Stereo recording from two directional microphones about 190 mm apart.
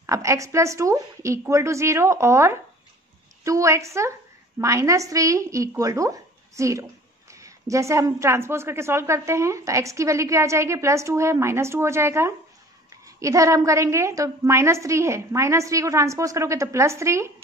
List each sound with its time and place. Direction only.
0.0 s a woman's voice: 15° right (ahead or behind)